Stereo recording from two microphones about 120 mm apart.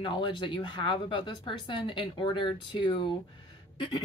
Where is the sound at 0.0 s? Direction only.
40° left (ahead or behind).